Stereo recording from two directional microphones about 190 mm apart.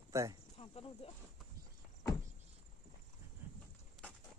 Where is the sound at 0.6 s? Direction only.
30° left (ahead or behind).